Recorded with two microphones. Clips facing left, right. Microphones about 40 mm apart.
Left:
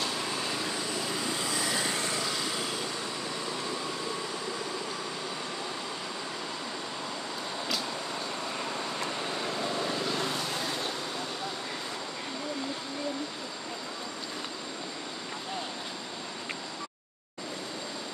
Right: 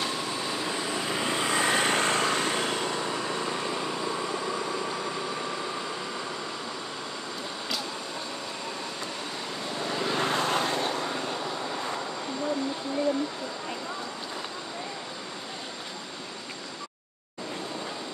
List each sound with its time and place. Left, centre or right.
0.4 s vehicle: centre; by 2.9 s right
10.1 s vehicle: right